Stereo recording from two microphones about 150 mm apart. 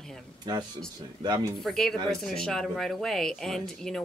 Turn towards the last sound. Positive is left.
turn(degrees=5)  # may be behind; listen again after turning